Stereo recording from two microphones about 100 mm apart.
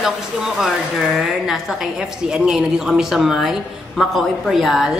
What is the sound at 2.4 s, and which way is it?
A woman's voice, 5° right (ahead or behind).